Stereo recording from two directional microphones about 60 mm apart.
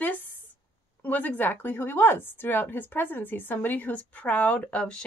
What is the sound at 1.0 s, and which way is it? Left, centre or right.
A woman's voice, left.